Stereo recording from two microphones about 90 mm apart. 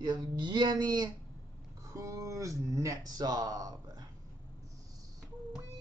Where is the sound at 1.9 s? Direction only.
35° right (ahead or behind).